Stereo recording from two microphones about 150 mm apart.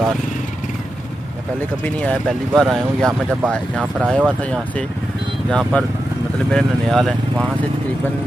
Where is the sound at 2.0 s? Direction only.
5° left (ahead or behind).